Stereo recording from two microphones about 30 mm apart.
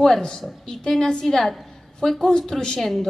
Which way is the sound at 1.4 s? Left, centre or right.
Centre.